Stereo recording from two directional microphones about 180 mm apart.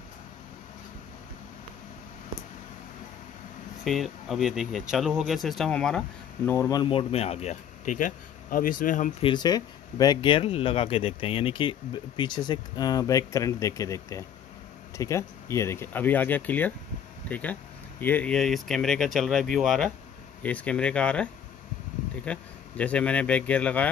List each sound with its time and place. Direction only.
3.8 s speech: centre (ahead or behind)
6.8 s speech: 30° left (ahead or behind); by 9.1 s 45° left (ahead or behind)
9.2 s speech: 25° left (ahead or behind); by 23.9 s 10° left (ahead or behind)